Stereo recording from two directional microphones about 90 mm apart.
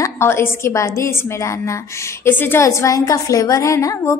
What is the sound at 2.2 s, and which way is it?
Speech, 25° left (ahead or behind).